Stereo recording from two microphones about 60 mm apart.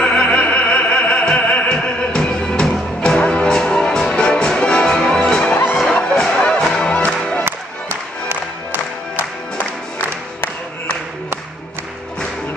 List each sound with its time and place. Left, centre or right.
0.0 s opera: centre
2.6 s music: centre
7.4 s music: right